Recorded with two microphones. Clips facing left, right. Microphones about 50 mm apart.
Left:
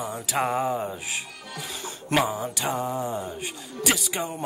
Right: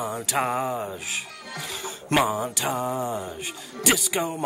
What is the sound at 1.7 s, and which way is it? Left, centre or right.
Music, centre.